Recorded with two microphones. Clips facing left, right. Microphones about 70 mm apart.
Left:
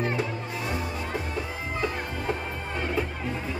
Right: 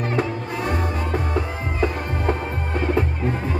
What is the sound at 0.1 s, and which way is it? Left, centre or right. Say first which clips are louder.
Music: right 6 dB; right.